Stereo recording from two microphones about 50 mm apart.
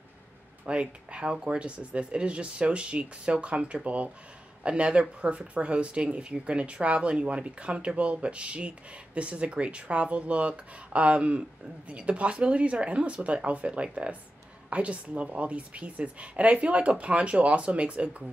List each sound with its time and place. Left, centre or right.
0.7 s speech: right